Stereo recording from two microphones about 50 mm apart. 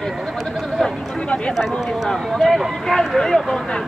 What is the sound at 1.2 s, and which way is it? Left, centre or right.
Speech, centre.